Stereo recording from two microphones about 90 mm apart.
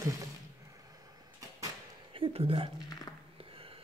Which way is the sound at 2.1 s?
85° right.